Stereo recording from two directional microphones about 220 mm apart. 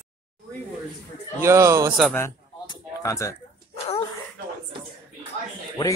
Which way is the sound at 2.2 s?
15° left (ahead or behind).